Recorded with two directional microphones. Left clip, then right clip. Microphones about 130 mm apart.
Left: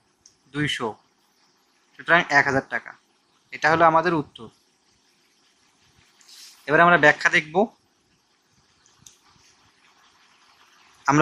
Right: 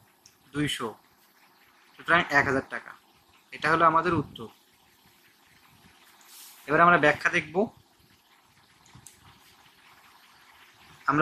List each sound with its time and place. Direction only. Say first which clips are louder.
0.5 s speech: left 4 dB; 40° left (ahead or behind)
2.0 s speech: left 4 dB; 40° left (ahead or behind)
6.6 s speech: left 4 dB; 50° left (ahead or behind)